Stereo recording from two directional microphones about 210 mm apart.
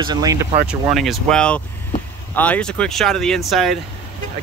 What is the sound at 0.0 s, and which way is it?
Speech, 20° right (ahead or behind).